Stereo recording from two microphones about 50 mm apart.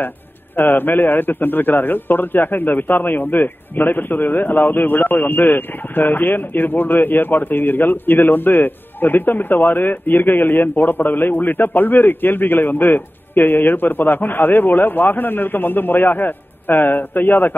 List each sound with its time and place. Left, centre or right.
0.6 s a man's voice: left